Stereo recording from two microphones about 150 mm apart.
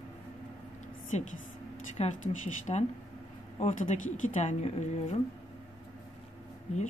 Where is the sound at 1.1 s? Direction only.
50° left (ahead or behind).